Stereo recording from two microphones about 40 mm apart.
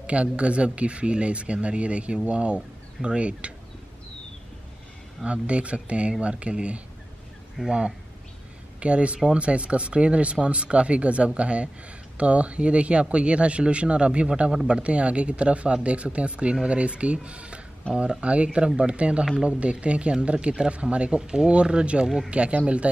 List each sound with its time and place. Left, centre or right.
0.0 s speech: right
5.2 s speech: right
7.6 s speech: centre
8.7 s speech: right